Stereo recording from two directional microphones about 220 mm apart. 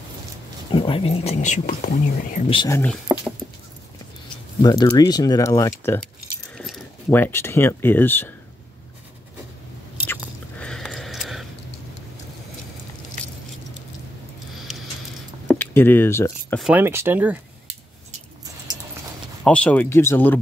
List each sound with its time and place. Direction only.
0.7 s speech: 25° left (ahead or behind)
2.6 s speech: 15° left (ahead or behind)
3.1 s dog: 5° right (ahead or behind)
4.6 s speech: 20° left (ahead or behind)
6.5 s speech: centre (ahead or behind)
10.6 s a sound: 5° left (ahead or behind)
15.5 s speech: 10° left (ahead or behind)
16.6 s speech: 10° right (ahead or behind)
19.4 s speech: 5° left (ahead or behind)